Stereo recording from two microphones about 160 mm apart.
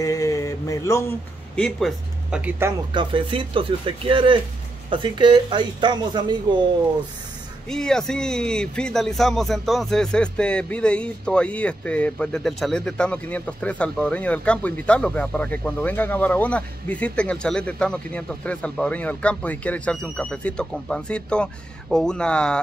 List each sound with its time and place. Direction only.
0.0 s a sound: 20° left (ahead or behind)
1.6 s speech: centre (ahead or behind)
2.9 s speech: 30° right (ahead or behind)
7.7 s speech: 5° left (ahead or behind)